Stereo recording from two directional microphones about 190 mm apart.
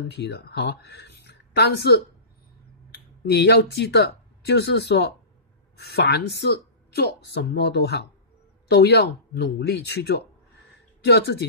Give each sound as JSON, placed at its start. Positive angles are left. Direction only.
{"t": 0.1, "sound": "speech", "side_deg": 60}
{"t": 3.3, "sound": "speech", "side_deg": 60}